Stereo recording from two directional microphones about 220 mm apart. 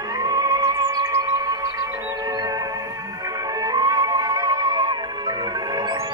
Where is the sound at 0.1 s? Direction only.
15° right (ahead or behind).